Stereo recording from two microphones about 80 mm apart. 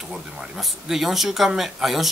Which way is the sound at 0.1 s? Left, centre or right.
Centre.